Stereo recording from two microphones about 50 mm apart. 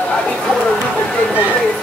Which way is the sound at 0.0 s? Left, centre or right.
Left.